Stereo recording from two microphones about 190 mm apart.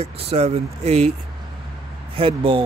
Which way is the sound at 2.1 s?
30° right (ahead or behind).